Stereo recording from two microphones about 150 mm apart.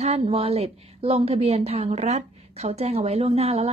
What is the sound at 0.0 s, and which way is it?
A woman's voice, 40° right (ahead or behind).